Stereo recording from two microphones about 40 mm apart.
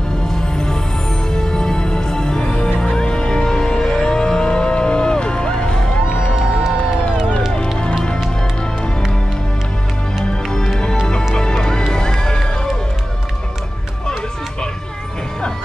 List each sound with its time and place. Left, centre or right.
0.3 s music: centre
6.3 s music: centre
10.3 s music: centre